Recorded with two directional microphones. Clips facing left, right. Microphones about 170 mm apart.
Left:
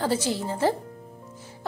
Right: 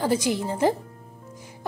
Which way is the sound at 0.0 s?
15° right (ahead or behind).